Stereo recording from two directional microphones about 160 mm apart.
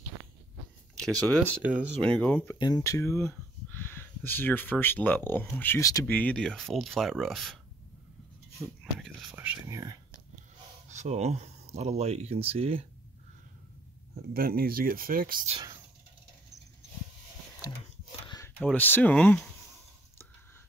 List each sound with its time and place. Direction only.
0.9 s speech: 5° left (ahead or behind)
1.6 s speech: 10° right (ahead or behind)
2.0 s speech: 5° left (ahead or behind)
2.6 s speech: 20° left (ahead or behind)
6.0 s speech: 10° left (ahead or behind)
9.2 s whispering: 5° right (ahead or behind)
10.9 s speech: 45° right (ahead or behind)
14.1 s speech: 70° right (ahead or behind)
18.6 s speech: 10° left (ahead or behind)